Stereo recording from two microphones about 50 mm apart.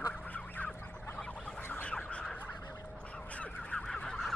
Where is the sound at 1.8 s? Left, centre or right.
Left.